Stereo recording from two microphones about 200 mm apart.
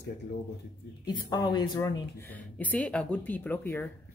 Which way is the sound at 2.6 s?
5° left (ahead or behind).